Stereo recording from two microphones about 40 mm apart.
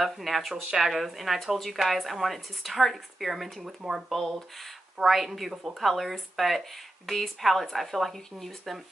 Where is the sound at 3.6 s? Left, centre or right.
Centre.